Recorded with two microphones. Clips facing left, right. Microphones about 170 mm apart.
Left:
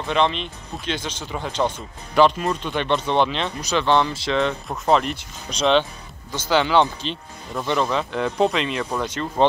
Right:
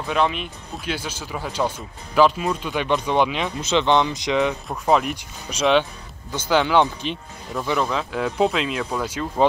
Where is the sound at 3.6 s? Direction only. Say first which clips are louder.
Right 1 dB; 20° right (ahead or behind).